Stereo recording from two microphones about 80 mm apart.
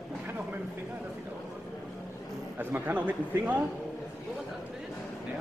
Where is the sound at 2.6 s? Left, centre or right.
Right.